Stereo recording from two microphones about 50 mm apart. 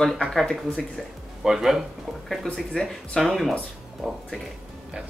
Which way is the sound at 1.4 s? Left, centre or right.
Centre.